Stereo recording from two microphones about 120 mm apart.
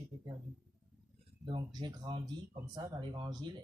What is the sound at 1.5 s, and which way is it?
Speech, 40° right (ahead or behind).